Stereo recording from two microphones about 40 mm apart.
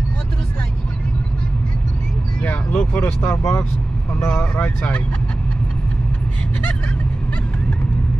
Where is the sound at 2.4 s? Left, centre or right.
Left.